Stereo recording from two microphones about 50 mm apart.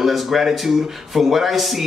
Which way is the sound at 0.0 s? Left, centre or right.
Centre.